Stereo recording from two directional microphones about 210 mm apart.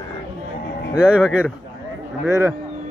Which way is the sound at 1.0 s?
5° right (ahead or behind).